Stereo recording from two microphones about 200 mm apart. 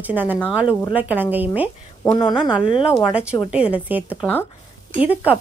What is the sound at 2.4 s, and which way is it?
Speech, 5° right (ahead or behind).